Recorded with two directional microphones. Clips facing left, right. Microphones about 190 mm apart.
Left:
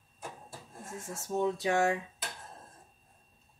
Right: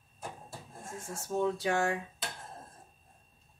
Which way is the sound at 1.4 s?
20° left (ahead or behind).